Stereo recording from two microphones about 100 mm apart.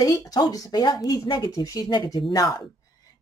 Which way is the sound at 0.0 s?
35° left (ahead or behind).